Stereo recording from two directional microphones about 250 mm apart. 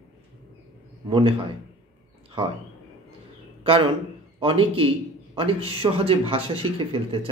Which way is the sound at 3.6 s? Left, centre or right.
Right.